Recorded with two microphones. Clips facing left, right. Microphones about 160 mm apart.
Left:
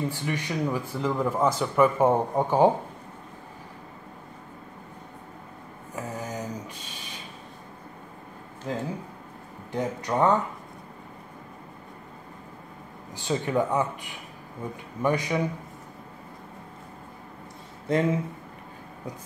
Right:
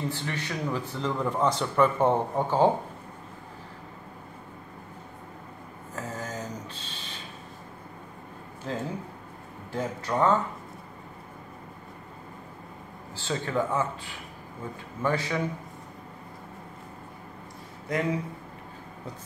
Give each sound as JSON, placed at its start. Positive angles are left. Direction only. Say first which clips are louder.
{"t": 0.1, "sound": "speech", "louder": "left 3 dB", "side_deg": 15}
{"t": 5.9, "sound": "a sound", "louder": "left 2 dB", "side_deg": 15}
{"t": 8.6, "sound": "speech", "louder": "left 1 dB", "side_deg": 10}
{"t": 13.1, "sound": "speech", "louder": "left 3 dB", "side_deg": 15}
{"t": 17.9, "sound": "speech", "louder": "left 5 dB", "side_deg": 25}